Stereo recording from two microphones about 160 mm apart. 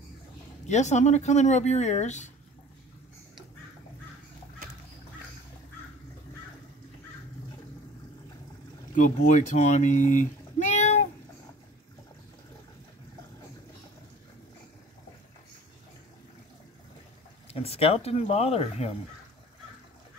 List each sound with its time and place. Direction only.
0.7 s speech: 45° left (ahead or behind)
8.9 s speech: 55° left (ahead or behind)
17.5 s speech: 40° left (ahead or behind)